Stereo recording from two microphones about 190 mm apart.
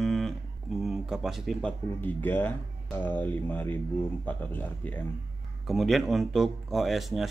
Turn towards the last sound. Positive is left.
turn(degrees=0)  # may be behind; listen again after turning